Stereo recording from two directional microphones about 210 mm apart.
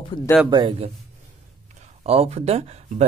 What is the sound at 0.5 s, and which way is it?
Speech, 25° right (ahead or behind).